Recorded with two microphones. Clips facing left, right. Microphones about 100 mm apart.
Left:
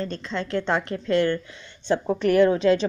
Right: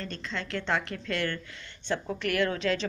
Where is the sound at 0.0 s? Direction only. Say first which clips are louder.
Left 7 dB; 30° left (ahead or behind).